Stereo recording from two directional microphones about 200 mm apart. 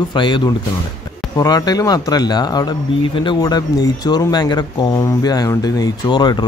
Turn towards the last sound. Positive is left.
turn(degrees=20)  # may be behind; listen again after turning